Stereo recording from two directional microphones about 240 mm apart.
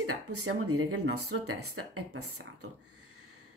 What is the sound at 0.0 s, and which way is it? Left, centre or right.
A woman's voice, right.